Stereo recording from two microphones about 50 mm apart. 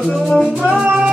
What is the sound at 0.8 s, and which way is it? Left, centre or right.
Music, centre.